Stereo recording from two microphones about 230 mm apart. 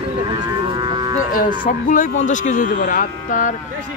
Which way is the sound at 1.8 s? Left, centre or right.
Left.